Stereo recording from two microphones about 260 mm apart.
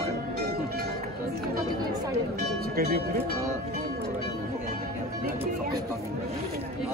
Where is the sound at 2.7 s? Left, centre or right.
Right.